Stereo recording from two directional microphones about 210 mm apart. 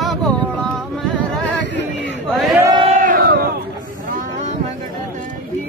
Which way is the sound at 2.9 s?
40° right (ahead or behind).